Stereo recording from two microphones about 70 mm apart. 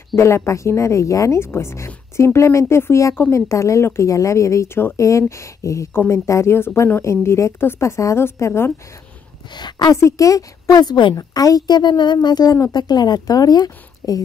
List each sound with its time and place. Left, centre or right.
0.2 s speech: left
9.5 s a woman's voice: left
9.9 s speech: left
10.8 s a woman's voice: left